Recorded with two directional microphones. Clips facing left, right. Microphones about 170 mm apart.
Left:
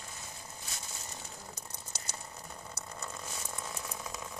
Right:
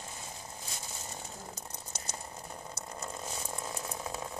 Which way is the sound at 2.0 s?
25° right (ahead or behind).